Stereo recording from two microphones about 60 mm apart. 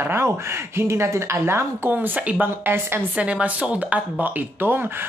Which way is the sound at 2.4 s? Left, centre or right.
Right.